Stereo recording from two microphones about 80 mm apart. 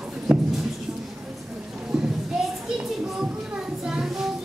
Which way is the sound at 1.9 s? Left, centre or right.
Centre.